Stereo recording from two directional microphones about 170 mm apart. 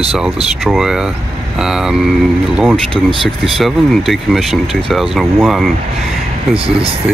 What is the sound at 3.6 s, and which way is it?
Speech, centre (ahead or behind).